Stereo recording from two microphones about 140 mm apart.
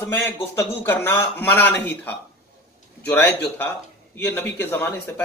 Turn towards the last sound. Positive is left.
turn(degrees=15)  # may be behind; listen again after turning